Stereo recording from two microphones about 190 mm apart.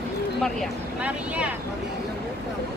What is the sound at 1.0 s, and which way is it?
Speech, 5° right (ahead or behind).